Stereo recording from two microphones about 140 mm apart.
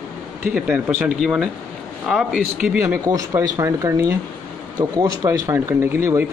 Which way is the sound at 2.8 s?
25° right (ahead or behind).